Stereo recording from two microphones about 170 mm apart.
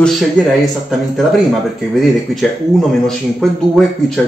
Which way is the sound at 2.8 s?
Centre (ahead or behind).